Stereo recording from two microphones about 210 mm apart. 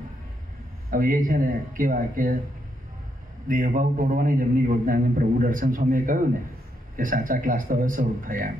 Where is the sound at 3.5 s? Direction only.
40° right (ahead or behind).